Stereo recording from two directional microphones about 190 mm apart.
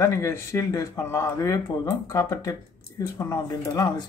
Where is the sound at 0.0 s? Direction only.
15° left (ahead or behind).